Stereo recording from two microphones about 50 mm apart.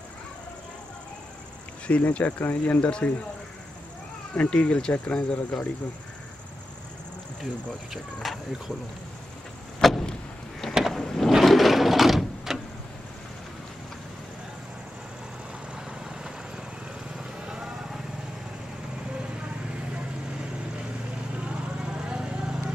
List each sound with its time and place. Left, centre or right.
1.9 s speech: left
4.3 s speech: left
7.9 s speech: centre
9.8 s vehicle: centre
11.3 s sewing machine: centre
15.7 s vehicle: centre
21.5 s vehicle: centre